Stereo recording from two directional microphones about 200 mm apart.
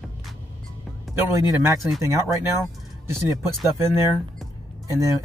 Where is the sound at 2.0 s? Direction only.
15° right (ahead or behind).